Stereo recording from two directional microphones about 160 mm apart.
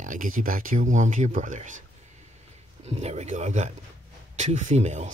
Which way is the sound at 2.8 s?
45° right (ahead or behind).